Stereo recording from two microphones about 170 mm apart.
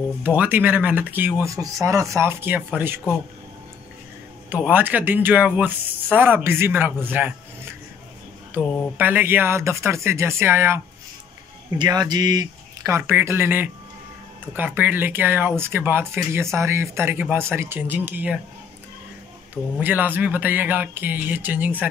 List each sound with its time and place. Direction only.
0.2 s speech: 10° right (ahead or behind)
4.5 s speech: 10° right (ahead or behind)
8.5 s speech: 10° right (ahead or behind)
11.8 s speech: 25° right (ahead or behind)
19.5 s speech: 10° right (ahead or behind)